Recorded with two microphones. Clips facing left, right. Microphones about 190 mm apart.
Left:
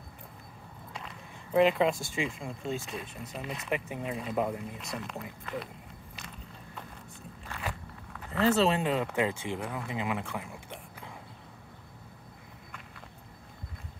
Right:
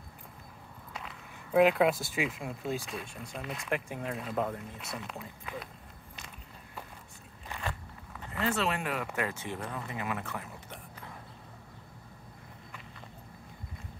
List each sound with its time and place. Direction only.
0.9 s speech: centre (ahead or behind)
4.8 s speech: 5° right (ahead or behind)
8.5 s speech: 25° left (ahead or behind)